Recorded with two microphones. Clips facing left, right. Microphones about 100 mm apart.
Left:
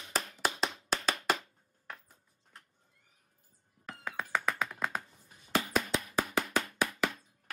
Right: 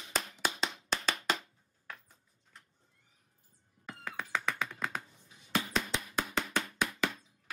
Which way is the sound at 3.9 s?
5° left (ahead or behind).